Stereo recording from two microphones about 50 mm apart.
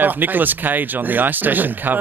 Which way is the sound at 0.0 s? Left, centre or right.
Right.